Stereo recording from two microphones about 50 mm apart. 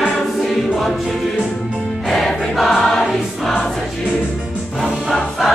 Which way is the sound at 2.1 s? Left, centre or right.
Centre.